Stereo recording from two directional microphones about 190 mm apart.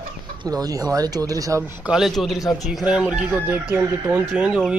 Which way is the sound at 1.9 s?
Centre (ahead or behind).